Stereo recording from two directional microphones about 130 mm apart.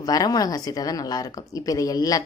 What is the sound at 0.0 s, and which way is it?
A woman's voice, 30° left (ahead or behind).